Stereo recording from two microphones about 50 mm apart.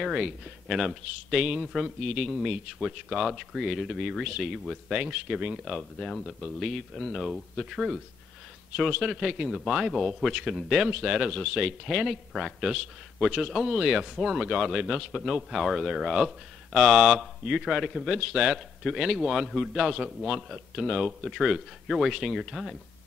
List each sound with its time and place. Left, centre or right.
0.0 s speech: centre
3.1 s a man's voice: centre
4.8 s a man's voice: centre